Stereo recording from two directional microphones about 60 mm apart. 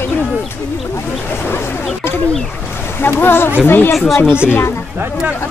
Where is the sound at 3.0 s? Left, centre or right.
Left.